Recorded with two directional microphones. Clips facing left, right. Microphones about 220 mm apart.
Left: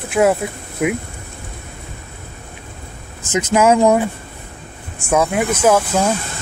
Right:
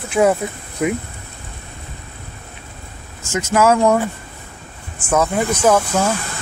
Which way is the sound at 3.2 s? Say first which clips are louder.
Left 1 dB; 20° left (ahead or behind).